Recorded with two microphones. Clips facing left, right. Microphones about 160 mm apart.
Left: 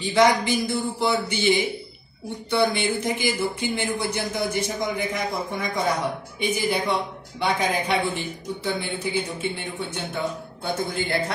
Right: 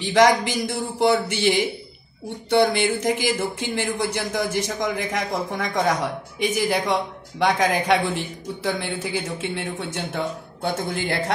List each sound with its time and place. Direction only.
0.0 s speech: 90° right